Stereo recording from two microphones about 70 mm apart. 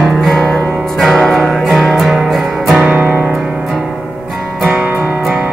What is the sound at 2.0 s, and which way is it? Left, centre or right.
Music, centre.